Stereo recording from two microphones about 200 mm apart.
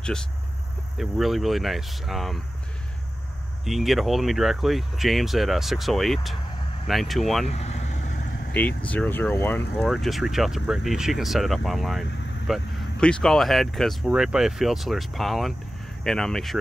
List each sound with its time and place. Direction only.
0.9 s speech: centre (ahead or behind)
3.6 s speech: centre (ahead or behind)
7.4 s vehicle: 30° left (ahead or behind)
8.5 s speech: 5° left (ahead or behind)